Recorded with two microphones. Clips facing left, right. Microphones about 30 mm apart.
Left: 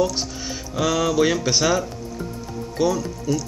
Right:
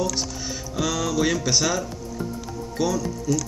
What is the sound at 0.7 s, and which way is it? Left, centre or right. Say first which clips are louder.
Speech: left 5 dB; centre.